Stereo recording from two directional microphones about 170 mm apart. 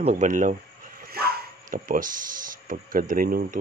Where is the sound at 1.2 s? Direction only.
65° right (ahead or behind).